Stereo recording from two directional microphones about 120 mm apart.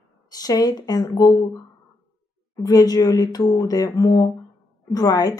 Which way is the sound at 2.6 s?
30° left (ahead or behind).